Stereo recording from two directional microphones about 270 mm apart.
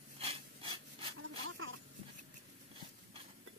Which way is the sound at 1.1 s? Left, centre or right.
Right.